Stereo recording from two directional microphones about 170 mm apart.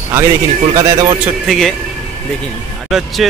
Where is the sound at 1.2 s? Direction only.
Centre (ahead or behind).